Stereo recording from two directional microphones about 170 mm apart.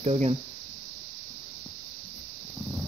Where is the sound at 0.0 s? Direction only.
40° right (ahead or behind).